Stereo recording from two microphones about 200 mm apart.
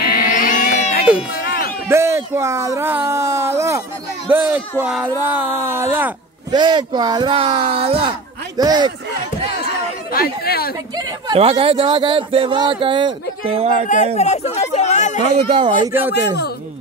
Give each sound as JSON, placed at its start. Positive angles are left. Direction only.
{"t": 0.1, "sound": "a sound", "side_deg": 40}
{"t": 1.9, "sound": "speech", "side_deg": -15}
{"t": 6.5, "sound": "speech", "side_deg": -20}
{"t": 10.1, "sound": "chatter", "side_deg": 50}
{"t": 11.3, "sound": "speech", "side_deg": -30}
{"t": 14.1, "sound": "speech", "side_deg": 35}
{"t": 15.3, "sound": "speech", "side_deg": -25}
{"t": 15.9, "sound": "speech", "side_deg": -10}